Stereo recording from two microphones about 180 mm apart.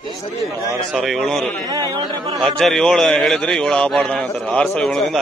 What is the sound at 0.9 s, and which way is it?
Speech, centre (ahead or behind).